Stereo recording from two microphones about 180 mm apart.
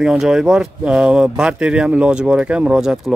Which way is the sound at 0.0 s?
5° right (ahead or behind).